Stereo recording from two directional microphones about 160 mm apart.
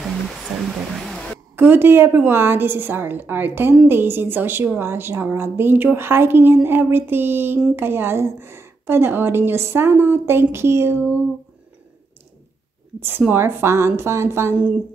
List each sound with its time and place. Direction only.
0.9 s a sound: centre (ahead or behind)
1.6 s a woman's voice: 15° right (ahead or behind)
13.0 s a woman's voice: 15° right (ahead or behind)